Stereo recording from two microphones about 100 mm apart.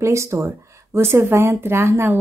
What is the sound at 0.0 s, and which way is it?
A woman's voice, 30° right (ahead or behind).